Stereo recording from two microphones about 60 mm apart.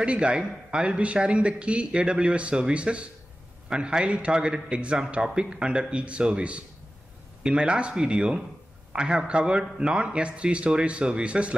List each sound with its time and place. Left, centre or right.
0.0 s a man's voice: centre